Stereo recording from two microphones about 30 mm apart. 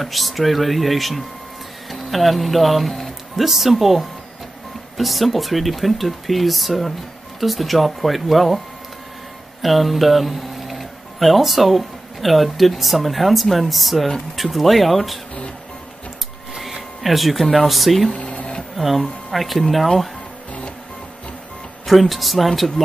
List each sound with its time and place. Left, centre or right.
0.0 s speech: centre
9.6 s speech: centre
17.0 s speech: centre
18.1 s printer: left
18.8 s speech: centre
21.8 s speech: centre